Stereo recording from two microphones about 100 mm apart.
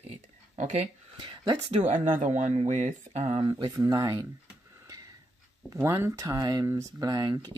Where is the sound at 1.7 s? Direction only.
90° right.